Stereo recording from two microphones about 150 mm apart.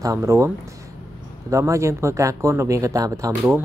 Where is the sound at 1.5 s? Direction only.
20° right (ahead or behind).